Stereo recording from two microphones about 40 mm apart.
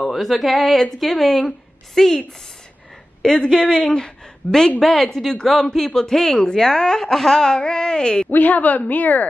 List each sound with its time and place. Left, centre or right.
0.1 s speech: centre
4.7 s speech: centre
8.3 s a woman's voice: left